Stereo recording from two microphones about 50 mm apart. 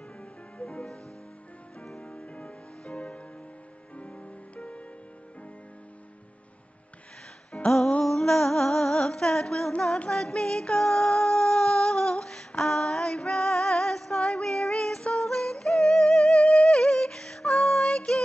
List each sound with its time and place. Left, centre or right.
0.2 s music: left
2.0 s music: centre
7.5 s music: left
8.0 s music: centre